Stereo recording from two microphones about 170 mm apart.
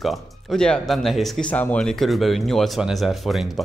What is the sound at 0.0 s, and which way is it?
Speech, centre (ahead or behind).